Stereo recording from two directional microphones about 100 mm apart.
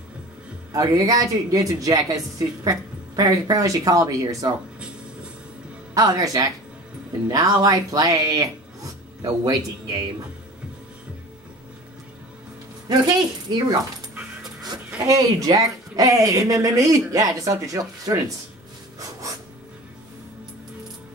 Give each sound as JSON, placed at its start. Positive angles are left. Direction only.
{"t": 0.7, "sound": "speech", "side_deg": -40}
{"t": 4.7, "sound": "music", "side_deg": -10}
{"t": 5.9, "sound": "speech", "side_deg": -35}
{"t": 12.8, "sound": "speech", "side_deg": -45}
{"t": 15.0, "sound": "speech", "side_deg": -35}
{"t": 18.9, "sound": "filing", "side_deg": -35}